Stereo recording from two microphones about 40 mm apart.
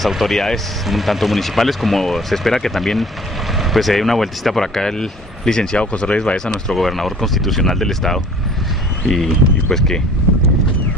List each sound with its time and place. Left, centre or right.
0.2 s speech: centre
5.8 s speech: left
6.7 s speech: centre